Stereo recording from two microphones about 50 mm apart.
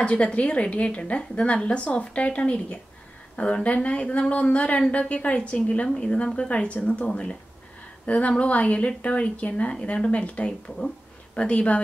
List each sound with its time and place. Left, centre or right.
0.0 s a woman's voice: left